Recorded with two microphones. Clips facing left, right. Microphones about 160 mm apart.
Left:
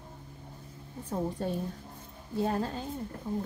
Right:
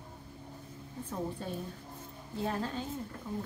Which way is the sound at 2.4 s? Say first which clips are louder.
Left 4 dB; 40° left (ahead or behind).